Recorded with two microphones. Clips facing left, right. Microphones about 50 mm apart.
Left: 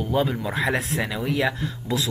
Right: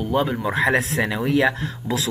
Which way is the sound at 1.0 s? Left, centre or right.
Right.